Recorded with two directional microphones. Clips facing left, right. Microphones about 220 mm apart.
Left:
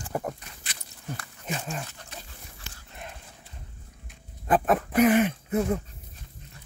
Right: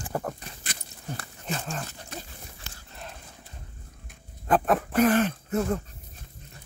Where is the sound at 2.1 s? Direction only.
45° right (ahead or behind).